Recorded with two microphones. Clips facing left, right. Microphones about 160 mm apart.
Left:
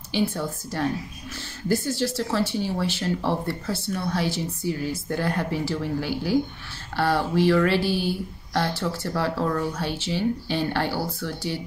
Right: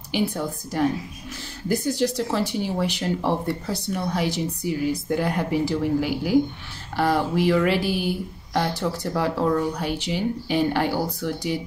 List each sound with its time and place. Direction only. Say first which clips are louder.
0.1 s speech: right 1 dB; 15° right (ahead or behind)